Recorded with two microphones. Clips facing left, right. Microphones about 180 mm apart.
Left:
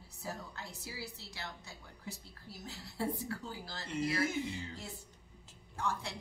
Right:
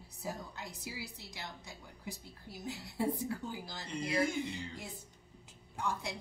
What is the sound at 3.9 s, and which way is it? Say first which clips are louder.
Speech: left 3 dB; 5° left (ahead or behind).